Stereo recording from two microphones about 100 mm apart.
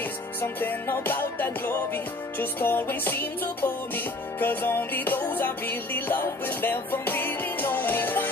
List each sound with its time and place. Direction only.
0.0 s music: 20° left (ahead or behind)